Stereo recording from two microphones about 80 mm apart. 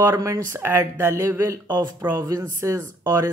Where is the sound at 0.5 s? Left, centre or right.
Right.